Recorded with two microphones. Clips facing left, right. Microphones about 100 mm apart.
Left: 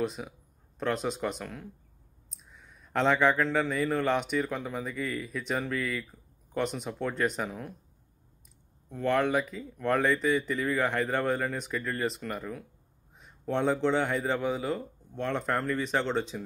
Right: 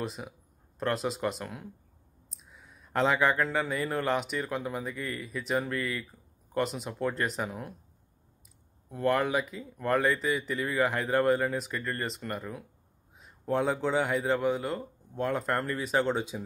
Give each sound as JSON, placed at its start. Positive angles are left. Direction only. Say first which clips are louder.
{"t": 0.0, "sound": "speech", "louder": "left 4 dB", "side_deg": 0}
{"t": 8.8, "sound": "speech", "louder": "even", "side_deg": -5}